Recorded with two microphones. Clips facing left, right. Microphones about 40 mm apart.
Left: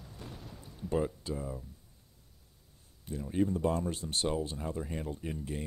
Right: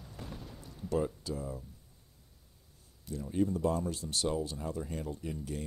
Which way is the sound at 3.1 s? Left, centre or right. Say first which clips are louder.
Left 1 dB; left.